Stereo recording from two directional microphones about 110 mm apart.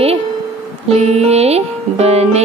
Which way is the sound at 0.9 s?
80° right.